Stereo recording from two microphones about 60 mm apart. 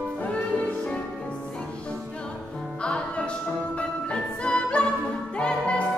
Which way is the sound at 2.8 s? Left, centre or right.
Centre.